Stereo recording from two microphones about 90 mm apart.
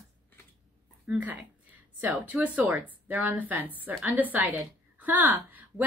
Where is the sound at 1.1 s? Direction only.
15° right (ahead or behind).